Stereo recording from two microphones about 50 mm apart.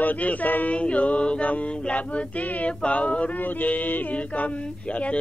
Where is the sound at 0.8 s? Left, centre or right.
Left.